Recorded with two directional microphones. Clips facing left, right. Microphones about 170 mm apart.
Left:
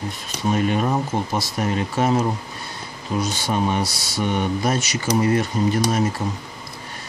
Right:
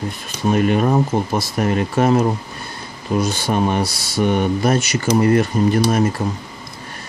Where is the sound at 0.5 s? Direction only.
55° right (ahead or behind).